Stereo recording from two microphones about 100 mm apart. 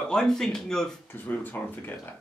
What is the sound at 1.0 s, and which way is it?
Speech, 20° left (ahead or behind).